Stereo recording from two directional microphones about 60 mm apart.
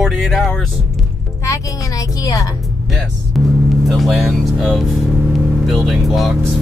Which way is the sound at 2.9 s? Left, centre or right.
Centre.